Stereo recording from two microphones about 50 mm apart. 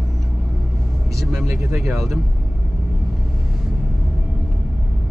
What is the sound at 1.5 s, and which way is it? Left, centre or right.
Speech, right.